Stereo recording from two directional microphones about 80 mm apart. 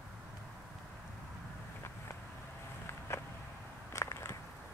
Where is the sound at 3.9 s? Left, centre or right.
Left.